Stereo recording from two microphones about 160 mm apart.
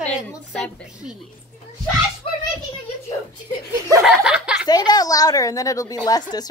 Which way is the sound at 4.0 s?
5° right (ahead or behind).